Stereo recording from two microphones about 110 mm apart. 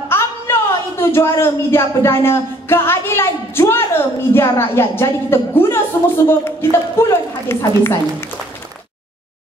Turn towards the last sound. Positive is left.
turn(degrees=20)  # may be behind; listen again after turning